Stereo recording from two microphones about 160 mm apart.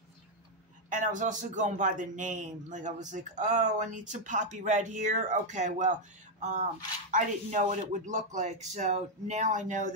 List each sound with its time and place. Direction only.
0.8 s speech: 55° right (ahead or behind)